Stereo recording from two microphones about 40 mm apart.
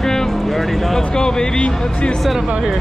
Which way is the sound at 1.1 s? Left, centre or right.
Centre.